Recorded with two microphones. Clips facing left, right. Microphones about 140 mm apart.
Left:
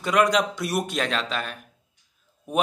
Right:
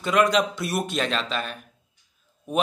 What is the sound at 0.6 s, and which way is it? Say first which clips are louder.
Speech: even; 10° left (ahead or behind).